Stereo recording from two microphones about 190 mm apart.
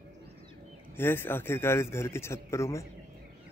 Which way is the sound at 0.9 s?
10° left (ahead or behind).